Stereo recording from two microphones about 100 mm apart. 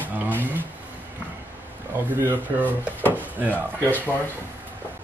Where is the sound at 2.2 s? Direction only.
20° right (ahead or behind).